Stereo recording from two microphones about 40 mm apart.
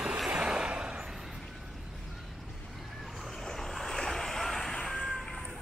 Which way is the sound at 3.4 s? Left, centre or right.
Centre.